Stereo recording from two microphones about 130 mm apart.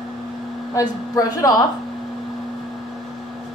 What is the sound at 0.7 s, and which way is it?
Speech, 30° left (ahead or behind).